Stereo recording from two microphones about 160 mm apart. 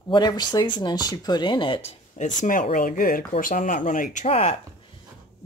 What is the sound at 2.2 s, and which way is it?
Speech, 55° left (ahead or behind).